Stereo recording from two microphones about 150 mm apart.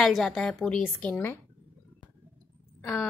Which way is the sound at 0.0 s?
Centre (ahead or behind).